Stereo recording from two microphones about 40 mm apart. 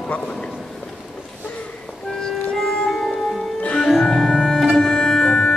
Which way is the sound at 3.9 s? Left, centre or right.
Centre.